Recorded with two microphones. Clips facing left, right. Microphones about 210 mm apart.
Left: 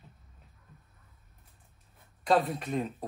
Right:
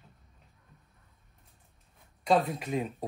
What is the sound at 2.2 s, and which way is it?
Speech, centre (ahead or behind).